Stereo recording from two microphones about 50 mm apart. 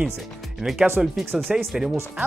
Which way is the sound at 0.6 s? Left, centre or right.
Centre.